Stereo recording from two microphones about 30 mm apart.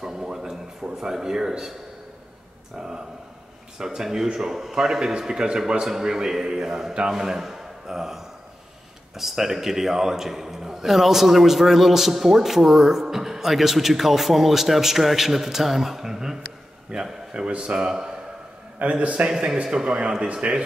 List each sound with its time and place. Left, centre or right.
0.0 s a sound: right
0.9 s a man's voice: centre
3.7 s a man's voice: centre
6.9 s a man's voice: right
7.2 s a man's voice: centre
16.9 s a man's voice: right
18.8 s a man's voice: right
19.5 s a man's voice: right